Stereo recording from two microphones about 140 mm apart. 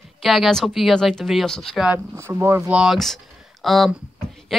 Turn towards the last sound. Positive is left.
turn(degrees=0)  # may be behind; listen again after turning